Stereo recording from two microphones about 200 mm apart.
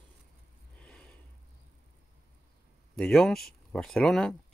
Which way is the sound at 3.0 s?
Centre (ahead or behind).